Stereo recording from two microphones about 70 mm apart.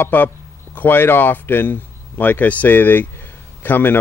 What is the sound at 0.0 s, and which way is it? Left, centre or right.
Speech, left.